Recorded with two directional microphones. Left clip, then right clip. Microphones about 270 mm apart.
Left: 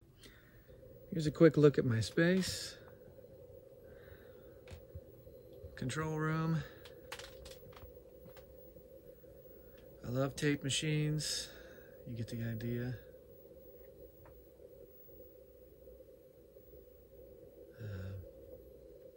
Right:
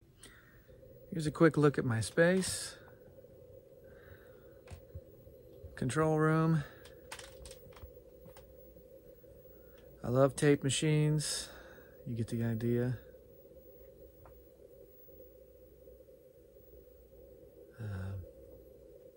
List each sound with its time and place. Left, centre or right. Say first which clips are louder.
1.1 s speech: left 1 dB; centre
5.8 s speech: right 8 dB; centre
10.0 s speech: right 8 dB; centre
17.7 s a sound: right 3 dB; centre